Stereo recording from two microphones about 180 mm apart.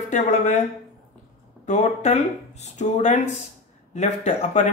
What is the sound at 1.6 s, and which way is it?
Speech, 40° left (ahead or behind).